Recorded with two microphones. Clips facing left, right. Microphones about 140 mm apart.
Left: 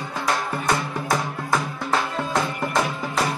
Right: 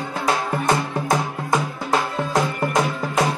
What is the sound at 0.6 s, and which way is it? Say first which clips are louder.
Music: right 4 dB; 20° right (ahead or behind).